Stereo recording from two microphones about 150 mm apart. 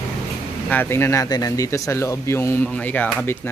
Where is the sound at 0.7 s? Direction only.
15° left (ahead or behind).